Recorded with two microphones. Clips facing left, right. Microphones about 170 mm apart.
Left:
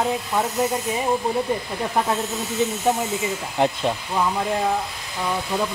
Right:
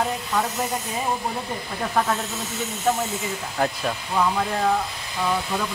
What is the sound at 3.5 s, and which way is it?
Speech, 20° left (ahead or behind).